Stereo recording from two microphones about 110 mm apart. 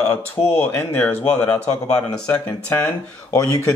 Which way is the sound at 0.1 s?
20° left (ahead or behind).